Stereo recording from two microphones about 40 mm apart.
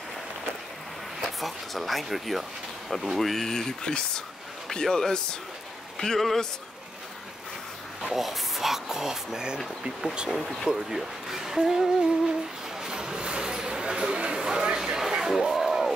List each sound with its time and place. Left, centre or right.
1.4 s speech: centre
8.1 s speech: centre
10.3 s speech: centre
12.8 s a sound: centre